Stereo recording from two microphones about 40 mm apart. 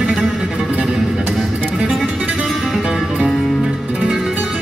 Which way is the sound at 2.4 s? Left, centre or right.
Centre.